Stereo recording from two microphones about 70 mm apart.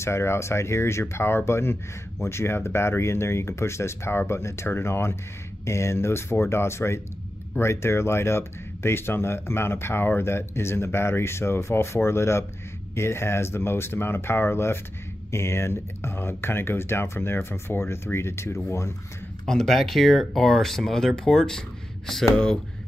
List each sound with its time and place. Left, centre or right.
0.0 s speech: left
19.4 s speech: centre